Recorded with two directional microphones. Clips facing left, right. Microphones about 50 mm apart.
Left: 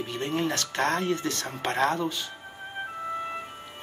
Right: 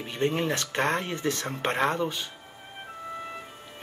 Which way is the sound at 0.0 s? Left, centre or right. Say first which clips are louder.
Right 1 dB; right.